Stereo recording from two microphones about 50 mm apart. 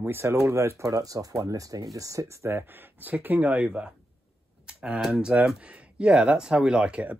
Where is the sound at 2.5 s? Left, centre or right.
Right.